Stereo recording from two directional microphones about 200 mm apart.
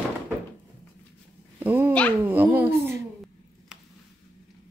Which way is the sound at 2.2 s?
10° right (ahead or behind).